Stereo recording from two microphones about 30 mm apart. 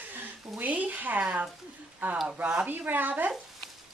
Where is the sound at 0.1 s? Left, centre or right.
Right.